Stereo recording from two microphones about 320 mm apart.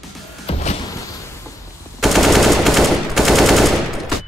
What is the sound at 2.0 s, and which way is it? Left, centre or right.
Machine gun, centre.